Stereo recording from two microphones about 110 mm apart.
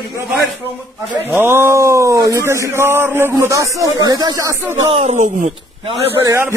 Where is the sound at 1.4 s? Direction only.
20° right (ahead or behind).